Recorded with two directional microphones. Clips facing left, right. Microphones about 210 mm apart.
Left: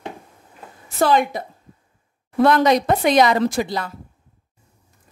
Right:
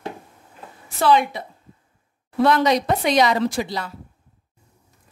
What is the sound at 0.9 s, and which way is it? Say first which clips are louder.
Speech: left 1 dB; 45° left (ahead or behind).